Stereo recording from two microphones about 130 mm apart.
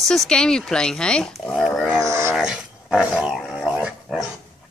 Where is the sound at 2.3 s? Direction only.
5° right (ahead or behind).